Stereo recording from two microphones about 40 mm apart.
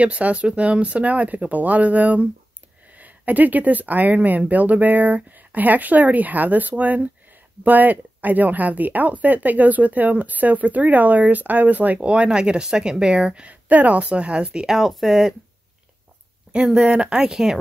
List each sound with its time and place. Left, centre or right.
0.0 s speech: right
12.0 s speech: right
13.5 s speech: right
13.9 s speech: right
14.7 s speech: centre
16.5 s a sound: centre
16.8 s speech: right
17.1 s speech: centre